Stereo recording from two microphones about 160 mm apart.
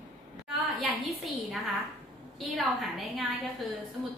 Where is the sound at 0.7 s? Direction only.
Centre (ahead or behind).